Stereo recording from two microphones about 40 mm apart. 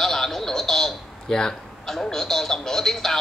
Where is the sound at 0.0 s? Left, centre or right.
Centre.